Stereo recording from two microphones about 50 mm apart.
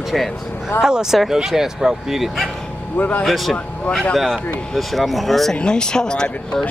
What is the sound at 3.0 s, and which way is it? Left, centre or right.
Speech, left.